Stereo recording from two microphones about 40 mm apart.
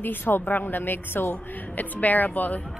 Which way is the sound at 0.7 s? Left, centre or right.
Left.